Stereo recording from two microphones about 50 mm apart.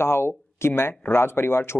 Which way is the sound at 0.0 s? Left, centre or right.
Left.